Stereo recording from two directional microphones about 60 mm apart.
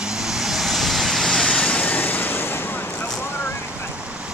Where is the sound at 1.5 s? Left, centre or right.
Left.